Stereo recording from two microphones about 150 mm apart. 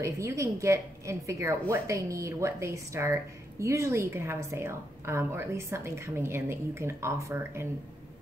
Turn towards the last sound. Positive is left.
turn(degrees=-15)  # may be behind; listen again after turning